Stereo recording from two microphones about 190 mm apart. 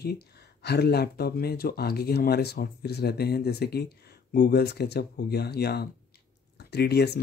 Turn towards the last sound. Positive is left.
turn(degrees=60)  # may be behind; listen again after turning